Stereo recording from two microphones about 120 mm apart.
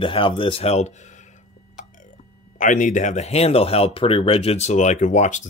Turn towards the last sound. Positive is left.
turn(degrees=90)